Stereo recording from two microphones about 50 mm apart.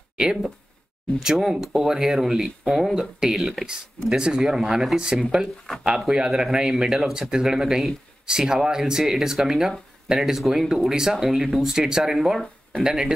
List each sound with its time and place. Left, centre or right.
0.2 s speech: centre